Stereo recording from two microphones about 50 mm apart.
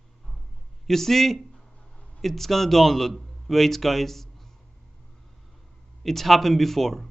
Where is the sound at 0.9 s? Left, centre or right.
Centre.